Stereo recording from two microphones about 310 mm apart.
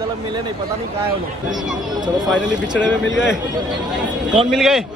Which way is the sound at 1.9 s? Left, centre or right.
Centre.